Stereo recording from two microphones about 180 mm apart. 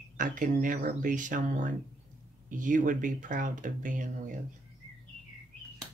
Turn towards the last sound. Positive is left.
turn(degrees=-45)  # may be behind; listen again after turning